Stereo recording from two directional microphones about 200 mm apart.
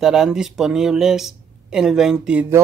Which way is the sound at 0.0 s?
5° right (ahead or behind).